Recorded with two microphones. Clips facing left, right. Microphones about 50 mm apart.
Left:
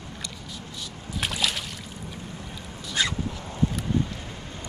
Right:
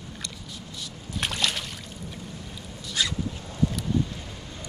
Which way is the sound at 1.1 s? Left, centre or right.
Centre.